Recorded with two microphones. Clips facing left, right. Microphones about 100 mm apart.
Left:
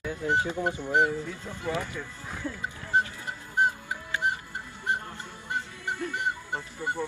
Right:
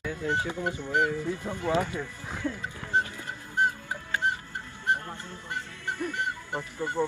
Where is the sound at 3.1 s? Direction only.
20° left (ahead or behind).